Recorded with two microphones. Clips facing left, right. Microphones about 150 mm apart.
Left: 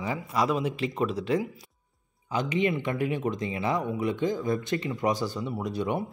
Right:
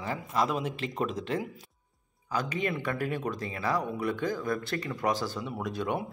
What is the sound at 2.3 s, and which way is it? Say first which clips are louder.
Speech: left 4 dB; 20° left (ahead or behind).